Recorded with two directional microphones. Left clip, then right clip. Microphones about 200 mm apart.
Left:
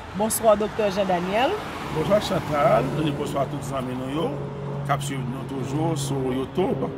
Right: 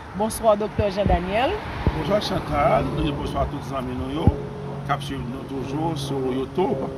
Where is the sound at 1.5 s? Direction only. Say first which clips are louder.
Even; 55° left (ahead or behind).